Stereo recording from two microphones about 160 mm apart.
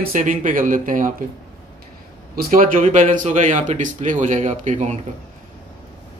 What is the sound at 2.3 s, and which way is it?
Speech, 60° right (ahead or behind).